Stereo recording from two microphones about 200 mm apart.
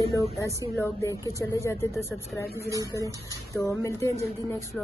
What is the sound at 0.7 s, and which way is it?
Speech, 15° left (ahead or behind).